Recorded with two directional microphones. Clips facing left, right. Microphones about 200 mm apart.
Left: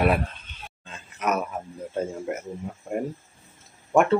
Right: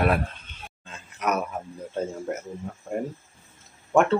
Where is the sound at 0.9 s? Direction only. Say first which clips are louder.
Left 1 dB; centre (ahead or behind).